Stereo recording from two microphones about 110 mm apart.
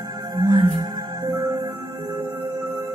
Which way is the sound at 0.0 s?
40° right (ahead or behind).